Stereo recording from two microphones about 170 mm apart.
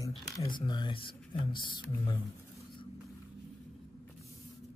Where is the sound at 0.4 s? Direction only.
25° left (ahead or behind).